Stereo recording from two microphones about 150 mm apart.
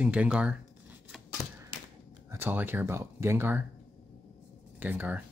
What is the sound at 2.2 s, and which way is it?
Speech, 15° right (ahead or behind).